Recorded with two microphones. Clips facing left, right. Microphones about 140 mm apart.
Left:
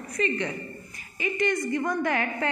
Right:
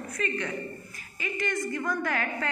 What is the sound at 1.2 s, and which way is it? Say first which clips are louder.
Speech: left 5 dB; 55° right (ahead or behind).